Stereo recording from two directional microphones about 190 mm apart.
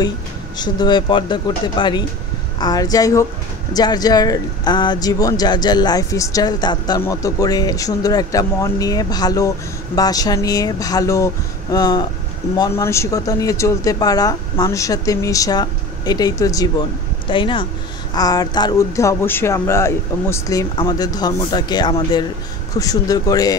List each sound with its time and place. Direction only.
0.6 s speech: 20° left (ahead or behind)